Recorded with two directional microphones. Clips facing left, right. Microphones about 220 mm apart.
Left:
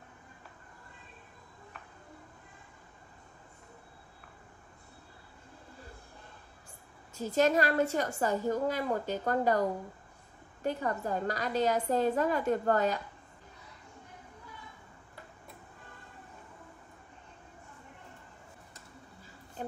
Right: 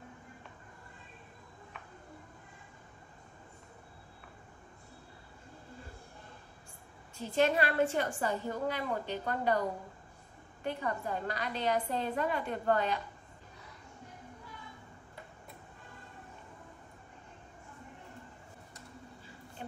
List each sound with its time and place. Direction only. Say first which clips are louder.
7.2 s a woman's voice: left 2 dB; 40° left (ahead or behind)
10.6 s a woman's voice: left 3 dB; 40° left (ahead or behind)